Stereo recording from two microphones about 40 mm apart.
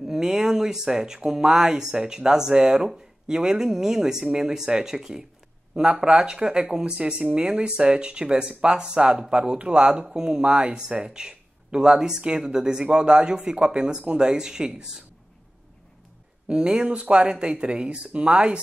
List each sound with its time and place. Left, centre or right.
0.0 s speech: centre
16.4 s speech: right